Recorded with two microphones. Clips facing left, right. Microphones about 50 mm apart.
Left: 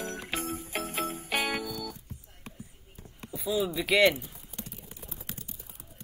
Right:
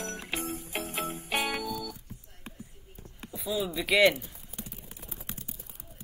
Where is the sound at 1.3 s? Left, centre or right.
Left.